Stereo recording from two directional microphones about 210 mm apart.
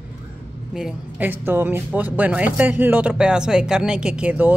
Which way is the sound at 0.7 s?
5° right (ahead or behind).